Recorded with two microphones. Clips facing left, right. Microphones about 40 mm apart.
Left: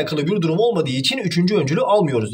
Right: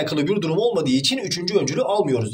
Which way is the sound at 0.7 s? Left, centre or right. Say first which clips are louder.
Even; centre.